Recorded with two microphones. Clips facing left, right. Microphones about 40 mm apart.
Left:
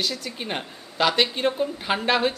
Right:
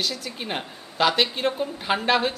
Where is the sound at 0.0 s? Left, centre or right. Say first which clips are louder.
Even; centre.